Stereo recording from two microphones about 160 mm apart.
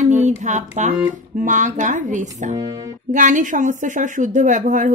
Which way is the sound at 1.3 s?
50° right (ahead or behind).